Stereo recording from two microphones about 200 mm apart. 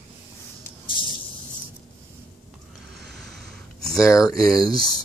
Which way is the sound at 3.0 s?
Centre (ahead or behind).